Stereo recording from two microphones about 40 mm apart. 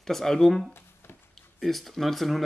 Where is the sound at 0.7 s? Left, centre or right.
Left.